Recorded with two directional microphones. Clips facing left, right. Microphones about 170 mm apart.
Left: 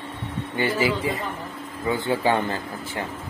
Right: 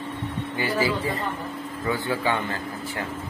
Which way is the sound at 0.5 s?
25° left (ahead or behind).